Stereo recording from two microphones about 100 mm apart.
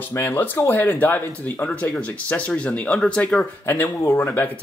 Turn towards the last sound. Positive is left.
turn(degrees=20)  # may be behind; listen again after turning